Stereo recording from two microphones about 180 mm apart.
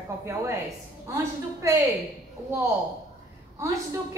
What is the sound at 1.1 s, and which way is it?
Speech, 15° right (ahead or behind).